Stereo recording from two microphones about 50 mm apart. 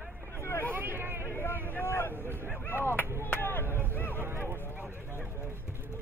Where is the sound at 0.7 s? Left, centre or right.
Right.